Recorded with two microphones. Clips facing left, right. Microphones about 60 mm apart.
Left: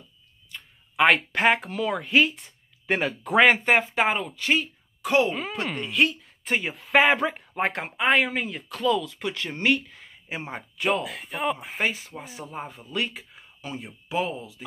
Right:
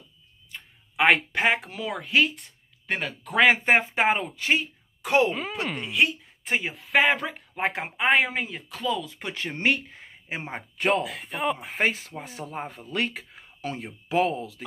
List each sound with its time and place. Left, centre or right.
0.9 s speech: centre
3.5 s speech: right
5.3 s speech: centre
7.7 s speech: centre
8.3 s speech: centre
9.0 s speech: right
11.0 s speech: centre
12.7 s speech: right